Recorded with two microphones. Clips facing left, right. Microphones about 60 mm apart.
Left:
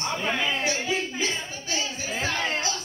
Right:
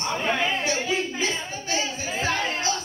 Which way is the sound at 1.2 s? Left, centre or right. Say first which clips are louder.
Right 2 dB; right.